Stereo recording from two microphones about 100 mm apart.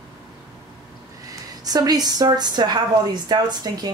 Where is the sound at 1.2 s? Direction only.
40° right (ahead or behind).